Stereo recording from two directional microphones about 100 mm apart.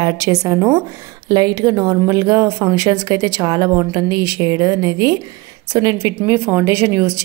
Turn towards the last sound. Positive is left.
turn(degrees=-30)  # may be behind; listen again after turning